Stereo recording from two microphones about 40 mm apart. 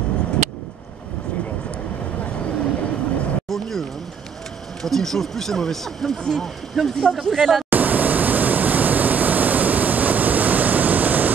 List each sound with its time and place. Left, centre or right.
2.2 s vehicle: left
3.4 s speech: centre
4.8 s speech: centre
7.7 s pink noise: right